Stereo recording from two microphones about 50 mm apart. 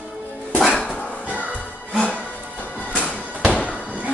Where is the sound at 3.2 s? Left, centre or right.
Left.